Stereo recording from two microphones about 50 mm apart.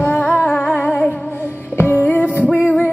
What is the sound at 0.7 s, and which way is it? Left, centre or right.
Music, left.